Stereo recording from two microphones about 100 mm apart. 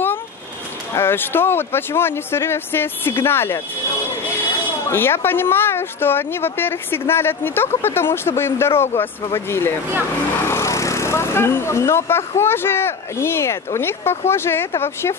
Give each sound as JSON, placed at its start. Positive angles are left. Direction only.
{"t": 0.9, "sound": "speech", "side_deg": 25}
{"t": 4.8, "sound": "speech", "side_deg": 25}